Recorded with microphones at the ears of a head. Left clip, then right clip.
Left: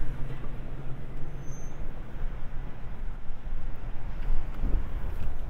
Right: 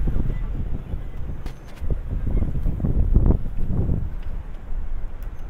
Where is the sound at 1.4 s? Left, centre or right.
Right.